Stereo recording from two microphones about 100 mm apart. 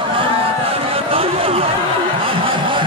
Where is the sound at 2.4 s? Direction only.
55° right (ahead or behind).